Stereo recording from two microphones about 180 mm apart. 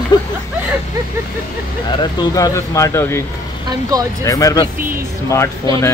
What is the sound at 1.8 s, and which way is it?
Speech, 20° left (ahead or behind).